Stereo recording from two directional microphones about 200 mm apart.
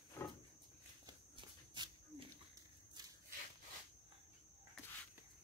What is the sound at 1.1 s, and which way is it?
Walk, 20° right (ahead or behind).